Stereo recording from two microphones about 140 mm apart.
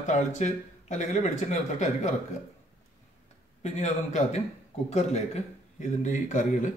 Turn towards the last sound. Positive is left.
turn(degrees=60)  # may be behind; listen again after turning